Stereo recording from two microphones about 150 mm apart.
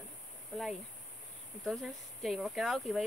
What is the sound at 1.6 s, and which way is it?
Speech, centre (ahead or behind).